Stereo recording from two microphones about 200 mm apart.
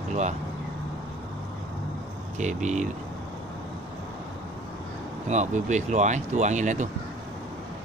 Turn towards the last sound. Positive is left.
turn(degrees=-35)  # may be behind; listen again after turning